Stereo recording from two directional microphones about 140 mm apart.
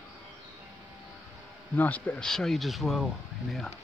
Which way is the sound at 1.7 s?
10° left (ahead or behind).